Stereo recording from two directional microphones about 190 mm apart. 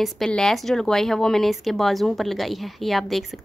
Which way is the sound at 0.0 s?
Centre (ahead or behind).